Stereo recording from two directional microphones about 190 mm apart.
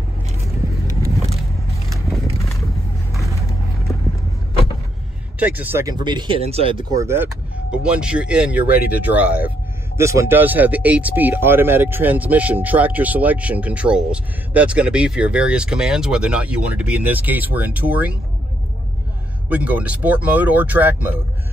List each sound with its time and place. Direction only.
1.0 s vehicle: 15° right (ahead or behind)
5.4 s speech: 10° right (ahead or behind)
6.0 s speech: 25° right (ahead or behind); by 18.1 s 10° right (ahead or behind)
19.5 s speech: 10° right (ahead or behind)